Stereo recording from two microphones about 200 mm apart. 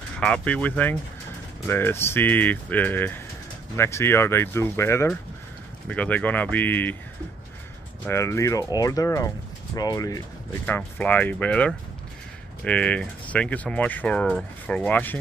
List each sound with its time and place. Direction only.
0.2 s speech: 5° left (ahead or behind)
8.1 s speech: 15° left (ahead or behind)